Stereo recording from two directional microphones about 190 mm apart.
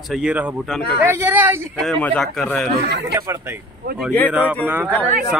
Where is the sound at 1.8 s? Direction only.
5° left (ahead or behind).